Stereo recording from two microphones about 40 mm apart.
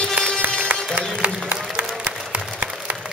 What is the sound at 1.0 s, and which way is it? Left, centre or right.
Applause, right.